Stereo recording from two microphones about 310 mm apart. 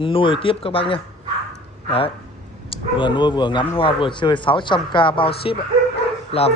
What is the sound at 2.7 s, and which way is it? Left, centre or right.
A man's voice, centre.